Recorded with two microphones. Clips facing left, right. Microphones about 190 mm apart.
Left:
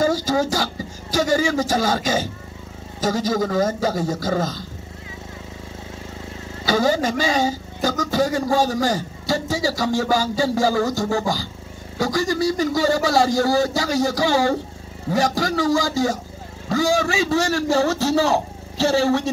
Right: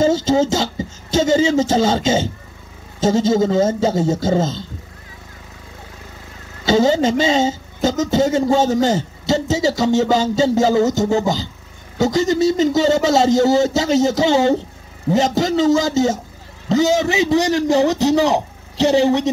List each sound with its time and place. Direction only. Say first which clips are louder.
0.0 s a woman's voice: right 4 dB; 25° right (ahead or behind)
6.6 s a woman's voice: right 5 dB; 25° right (ahead or behind)